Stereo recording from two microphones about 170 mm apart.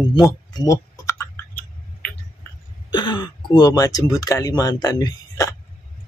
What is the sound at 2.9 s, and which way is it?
Speech, 30° left (ahead or behind).